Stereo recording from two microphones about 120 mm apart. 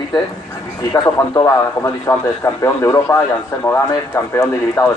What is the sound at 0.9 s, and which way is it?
A man's voice, 30° left (ahead or behind).